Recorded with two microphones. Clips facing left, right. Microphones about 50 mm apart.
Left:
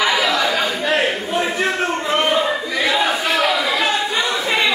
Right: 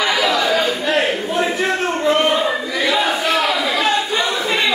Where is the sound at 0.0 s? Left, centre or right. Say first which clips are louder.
Even; centre.